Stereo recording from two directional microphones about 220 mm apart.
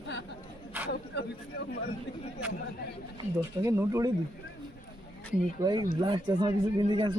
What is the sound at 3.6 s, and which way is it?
Speech, 15° right (ahead or behind).